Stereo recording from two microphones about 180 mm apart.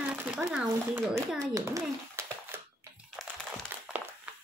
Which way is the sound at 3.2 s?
Centre (ahead or behind).